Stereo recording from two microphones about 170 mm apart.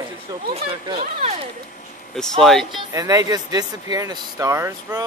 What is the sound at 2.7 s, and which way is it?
Speech, 20° right (ahead or behind).